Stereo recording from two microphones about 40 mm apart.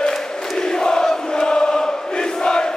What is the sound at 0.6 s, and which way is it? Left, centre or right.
Chant, centre.